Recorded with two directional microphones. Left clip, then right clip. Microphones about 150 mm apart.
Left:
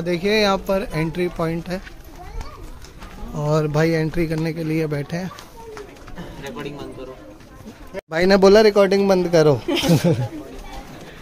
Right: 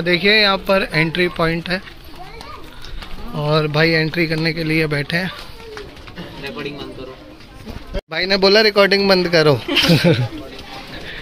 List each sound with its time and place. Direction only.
0.0 s speech: 10° left (ahead or behind)
3.5 s speech: 30° left (ahead or behind); by 5.3 s 10° left (ahead or behind)
8.1 s a man's voice: 50° left (ahead or behind)
8.5 s speech: 30° left (ahead or behind); by 10.2 s 10° left (ahead or behind)